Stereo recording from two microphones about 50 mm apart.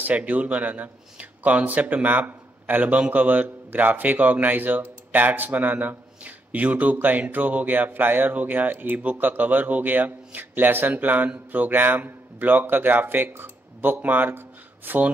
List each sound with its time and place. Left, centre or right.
0.0 s speech: right